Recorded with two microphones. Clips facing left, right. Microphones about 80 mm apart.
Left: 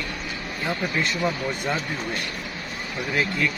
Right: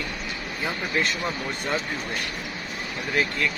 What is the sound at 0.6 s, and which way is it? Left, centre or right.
Speech, centre.